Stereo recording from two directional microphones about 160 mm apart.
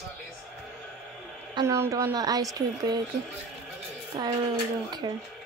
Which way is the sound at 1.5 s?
15° right (ahead or behind).